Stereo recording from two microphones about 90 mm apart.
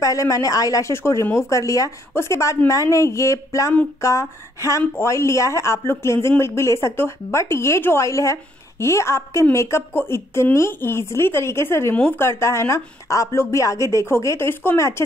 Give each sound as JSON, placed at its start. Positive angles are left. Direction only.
{"t": 0.0, "sound": "speech", "side_deg": 40}
{"t": 11.9, "sound": "speech", "side_deg": 20}